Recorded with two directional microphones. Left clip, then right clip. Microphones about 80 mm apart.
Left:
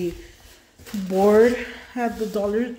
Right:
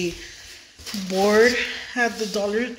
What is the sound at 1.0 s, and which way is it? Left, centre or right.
Speech, left.